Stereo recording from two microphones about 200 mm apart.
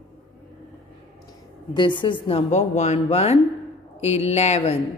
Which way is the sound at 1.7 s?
25° left (ahead or behind).